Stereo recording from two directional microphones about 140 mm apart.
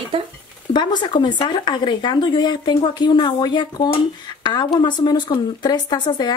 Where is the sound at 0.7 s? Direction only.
30° left (ahead or behind).